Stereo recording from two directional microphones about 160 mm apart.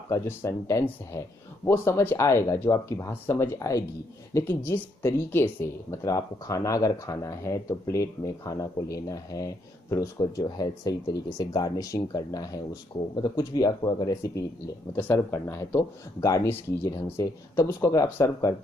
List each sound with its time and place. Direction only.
0.1 s speech: 15° left (ahead or behind)